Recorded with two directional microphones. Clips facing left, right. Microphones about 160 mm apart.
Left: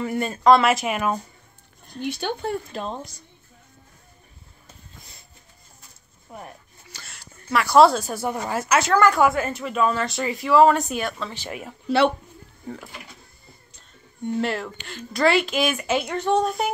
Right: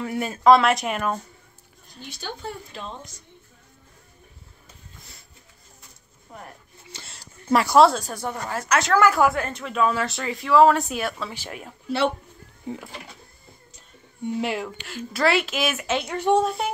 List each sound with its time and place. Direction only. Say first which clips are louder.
0.0 s a woman's voice: even; centre (ahead or behind)
2.0 s speech: left 9 dB; 60° left (ahead or behind); by 3.2 s 35° left (ahead or behind)
6.3 s speech: left 3 dB; 10° left (ahead or behind)
6.9 s a sound: right 2 dB; 25° right (ahead or behind)
7.7 s a woman's voice: left 3 dB; centre (ahead or behind)
14.2 s a woman's voice: left 1 dB; 10° right (ahead or behind)
16.2 s speech: right 3 dB; 10° right (ahead or behind)
16.4 s a woman's voice: left 1 dB; centre (ahead or behind)